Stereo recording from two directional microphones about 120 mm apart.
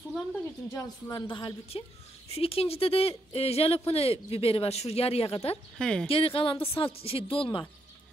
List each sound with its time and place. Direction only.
0.7 s speech: 20° left (ahead or behind)
1.1 s speech: 40° left (ahead or behind)
2.2 s speech: 55° left (ahead or behind)
5.8 s speech: 5° left (ahead or behind)
6.0 s speech: 50° left (ahead or behind)